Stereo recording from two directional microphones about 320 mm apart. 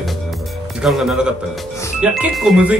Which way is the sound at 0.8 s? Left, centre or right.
Centre.